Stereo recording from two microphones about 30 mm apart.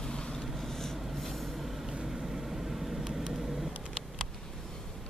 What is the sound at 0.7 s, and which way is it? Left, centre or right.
Vehicle, centre.